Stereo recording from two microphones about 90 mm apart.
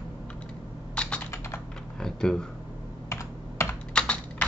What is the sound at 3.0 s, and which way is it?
Computer keyboard, 30° left (ahead or behind).